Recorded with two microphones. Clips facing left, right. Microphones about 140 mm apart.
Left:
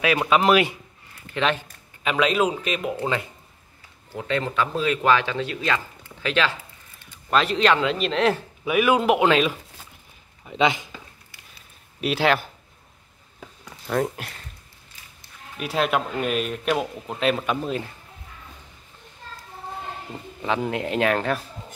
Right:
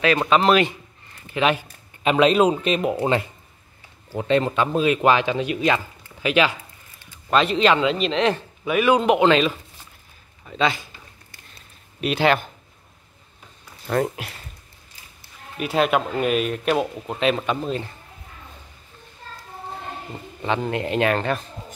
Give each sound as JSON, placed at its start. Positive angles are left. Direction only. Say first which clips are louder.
{"t": 0.0, "sound": "speech", "louder": "right 2 dB", "side_deg": 10}
{"t": 1.3, "sound": "speech", "louder": "right 3 dB", "side_deg": -10}
{"t": 2.0, "sound": "speech", "louder": "right 5 dB", "side_deg": -25}
{"t": 7.1, "sound": "a man's voice", "louder": "right 2 dB", "side_deg": 0}
{"t": 11.5, "sound": "a sound", "louder": "right 2 dB", "side_deg": 0}
{"t": 13.8, "sound": "a man's voice", "louder": "right 2 dB", "side_deg": 0}
{"t": 15.5, "sound": "a man's voice", "louder": "right 3 dB", "side_deg": 0}
{"t": 20.4, "sound": "a man's voice", "louder": "right 1 dB", "side_deg": 0}